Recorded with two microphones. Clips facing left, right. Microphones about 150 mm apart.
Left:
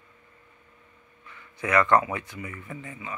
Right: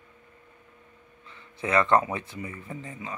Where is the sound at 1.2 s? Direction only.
25° right (ahead or behind).